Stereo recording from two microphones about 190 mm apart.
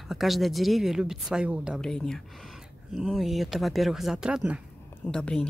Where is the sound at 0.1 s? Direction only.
Centre (ahead or behind).